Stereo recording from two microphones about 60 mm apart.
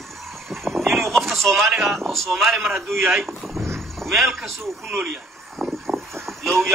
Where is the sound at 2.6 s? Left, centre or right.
Right.